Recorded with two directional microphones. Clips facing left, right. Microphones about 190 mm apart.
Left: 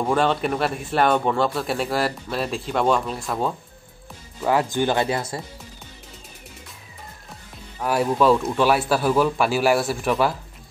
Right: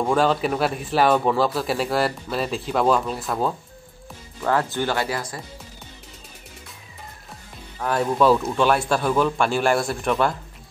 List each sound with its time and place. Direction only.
0.0 s a man's voice: centre (ahead or behind)
4.4 s speech: 15° left (ahead or behind)
7.8 s a man's voice: 10° left (ahead or behind)